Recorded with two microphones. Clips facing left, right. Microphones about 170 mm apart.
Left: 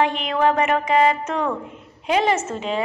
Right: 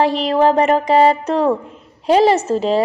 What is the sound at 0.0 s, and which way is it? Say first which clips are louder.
A woman's voice: right 5 dB; 35° right (ahead or behind).